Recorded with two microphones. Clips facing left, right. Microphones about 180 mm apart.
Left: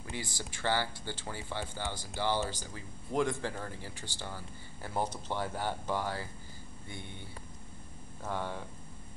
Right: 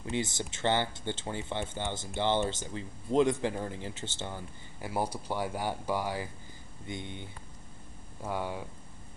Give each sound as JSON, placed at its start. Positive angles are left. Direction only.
{"t": 0.1, "sound": "speech", "side_deg": -20}
{"t": 4.9, "sound": "speech", "side_deg": -10}